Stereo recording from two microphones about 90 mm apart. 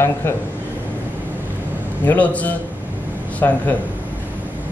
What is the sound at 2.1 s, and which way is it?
A man's voice, 15° left (ahead or behind).